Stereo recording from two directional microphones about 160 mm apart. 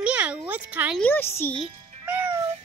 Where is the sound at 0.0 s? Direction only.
5° right (ahead or behind).